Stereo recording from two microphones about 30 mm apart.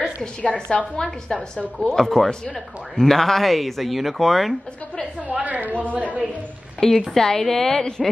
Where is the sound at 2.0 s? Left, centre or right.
Centre.